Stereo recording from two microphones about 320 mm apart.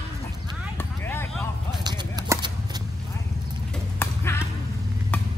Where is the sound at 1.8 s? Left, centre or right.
Centre.